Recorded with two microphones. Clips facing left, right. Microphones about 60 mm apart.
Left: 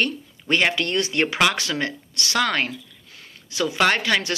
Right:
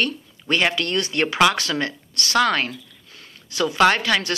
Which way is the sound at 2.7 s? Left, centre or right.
Left.